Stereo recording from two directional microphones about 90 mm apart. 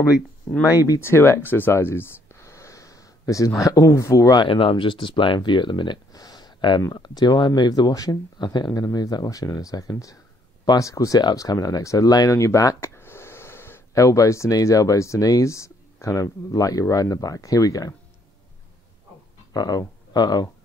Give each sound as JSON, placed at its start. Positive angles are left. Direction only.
{"t": 0.8, "sound": "speech", "side_deg": 30}
{"t": 4.4, "sound": "speech", "side_deg": 70}
{"t": 19.5, "sound": "speech", "side_deg": 45}